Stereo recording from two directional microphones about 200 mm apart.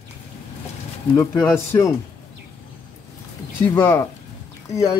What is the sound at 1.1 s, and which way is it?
Speech, 15° left (ahead or behind).